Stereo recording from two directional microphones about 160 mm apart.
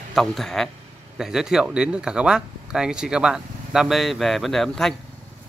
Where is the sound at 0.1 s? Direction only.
Centre (ahead or behind).